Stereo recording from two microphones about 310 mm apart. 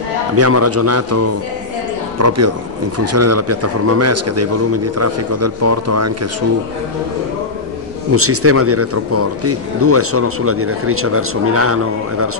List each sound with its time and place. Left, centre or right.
0.4 s speech: right
8.1 s speech: right